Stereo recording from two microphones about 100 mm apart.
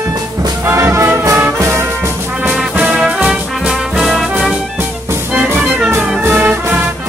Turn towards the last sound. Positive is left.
turn(degrees=-20)  # may be behind; listen again after turning